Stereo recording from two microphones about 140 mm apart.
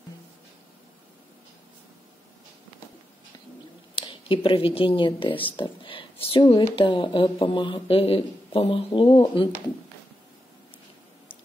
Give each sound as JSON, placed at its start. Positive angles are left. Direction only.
{"t": 3.9, "sound": "a woman's voice", "side_deg": 35}